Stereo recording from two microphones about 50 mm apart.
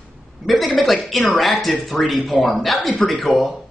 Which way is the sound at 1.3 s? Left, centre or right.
Centre.